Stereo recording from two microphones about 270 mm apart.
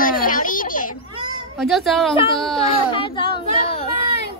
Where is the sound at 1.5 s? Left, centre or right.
Centre.